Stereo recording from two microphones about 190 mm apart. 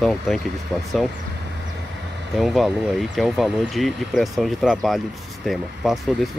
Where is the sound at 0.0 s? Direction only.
Centre (ahead or behind).